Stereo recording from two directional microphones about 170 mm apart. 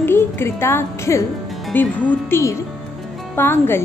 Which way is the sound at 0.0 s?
15° left (ahead or behind).